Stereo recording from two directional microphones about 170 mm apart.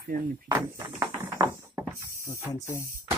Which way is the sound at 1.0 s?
20° right (ahead or behind).